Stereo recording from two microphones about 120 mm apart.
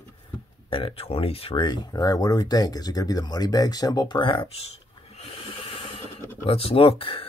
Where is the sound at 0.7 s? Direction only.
50° left (ahead or behind).